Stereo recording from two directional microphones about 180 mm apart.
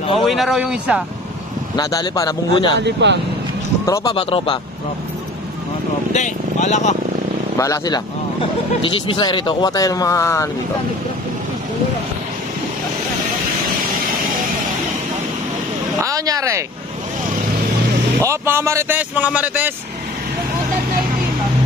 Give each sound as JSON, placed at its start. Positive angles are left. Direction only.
{"t": 0.2, "sound": "speech", "side_deg": 0}
{"t": 1.8, "sound": "speech", "side_deg": 20}
{"t": 2.8, "sound": "speech", "side_deg": -80}
{"t": 3.8, "sound": "speech", "side_deg": 20}
{"t": 4.1, "sound": "speech", "side_deg": 30}
{"t": 6.1, "sound": "speech", "side_deg": 40}
{"t": 7.5, "sound": "speech", "side_deg": 15}
{"t": 16.0, "sound": "a sound", "side_deg": -20}
{"t": 18.2, "sound": "speech", "side_deg": -15}